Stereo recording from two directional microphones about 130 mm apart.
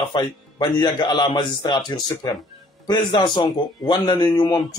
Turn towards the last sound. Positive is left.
turn(degrees=35)  # may be behind; listen again after turning